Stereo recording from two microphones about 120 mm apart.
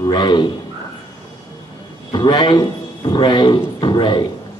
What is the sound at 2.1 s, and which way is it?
A man's voice, 40° left (ahead or behind).